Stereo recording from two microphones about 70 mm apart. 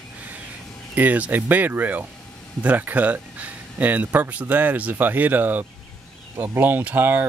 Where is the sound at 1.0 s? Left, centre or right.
Right.